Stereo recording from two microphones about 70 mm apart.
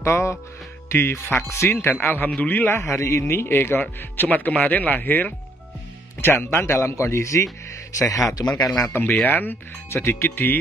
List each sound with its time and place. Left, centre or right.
0.0 s speech: left
2.7 s speech: left
8.4 s a man's voice: left
9.2 s speech: left